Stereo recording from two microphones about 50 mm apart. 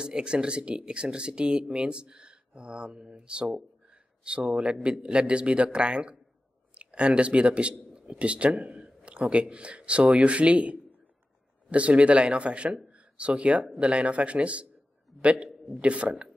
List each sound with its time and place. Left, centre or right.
0.0 s a man's voice: centre